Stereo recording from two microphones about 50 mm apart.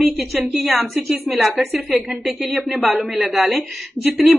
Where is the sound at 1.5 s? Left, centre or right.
Right.